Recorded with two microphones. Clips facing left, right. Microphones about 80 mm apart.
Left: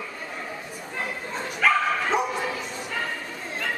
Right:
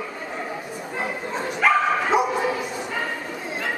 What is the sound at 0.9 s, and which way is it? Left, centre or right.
Dog, centre.